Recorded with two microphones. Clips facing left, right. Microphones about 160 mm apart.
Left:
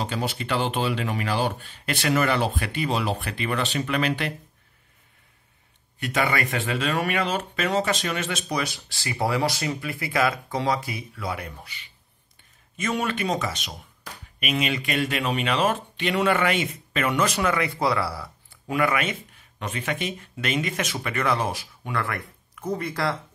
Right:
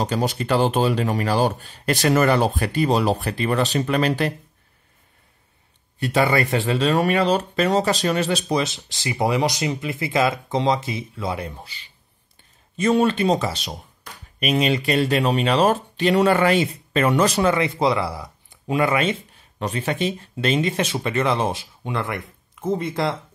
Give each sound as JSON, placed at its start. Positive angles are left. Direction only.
{"t": 0.0, "sound": "speech", "side_deg": -40}
{"t": 5.9, "sound": "speech", "side_deg": -30}